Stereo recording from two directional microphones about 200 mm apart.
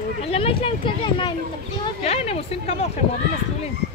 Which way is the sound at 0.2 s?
30° left (ahead or behind).